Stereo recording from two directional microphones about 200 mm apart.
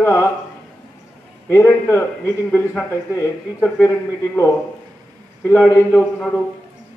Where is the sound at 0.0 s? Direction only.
15° left (ahead or behind).